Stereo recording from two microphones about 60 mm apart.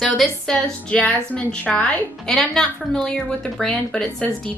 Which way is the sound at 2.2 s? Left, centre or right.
Centre.